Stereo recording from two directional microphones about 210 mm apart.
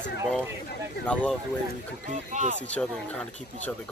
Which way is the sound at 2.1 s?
35° right (ahead or behind).